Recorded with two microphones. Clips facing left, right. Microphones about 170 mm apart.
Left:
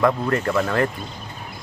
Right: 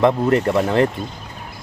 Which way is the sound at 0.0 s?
20° right (ahead or behind).